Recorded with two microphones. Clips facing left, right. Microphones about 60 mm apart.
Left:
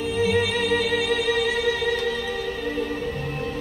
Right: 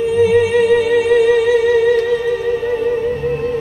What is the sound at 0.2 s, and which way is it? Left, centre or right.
Music, right.